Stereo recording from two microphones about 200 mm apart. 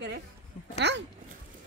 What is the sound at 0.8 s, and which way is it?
Speech, 60° right (ahead or behind).